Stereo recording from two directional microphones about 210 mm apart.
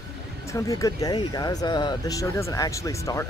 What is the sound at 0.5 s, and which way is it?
Speech, 15° left (ahead or behind).